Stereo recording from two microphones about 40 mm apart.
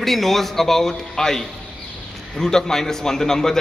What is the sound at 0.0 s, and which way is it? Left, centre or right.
A man's voice, centre.